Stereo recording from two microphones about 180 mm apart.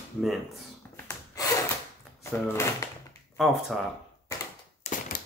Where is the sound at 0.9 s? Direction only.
15° left (ahead or behind).